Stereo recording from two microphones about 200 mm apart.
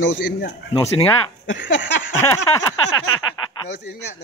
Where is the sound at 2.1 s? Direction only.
15° left (ahead or behind).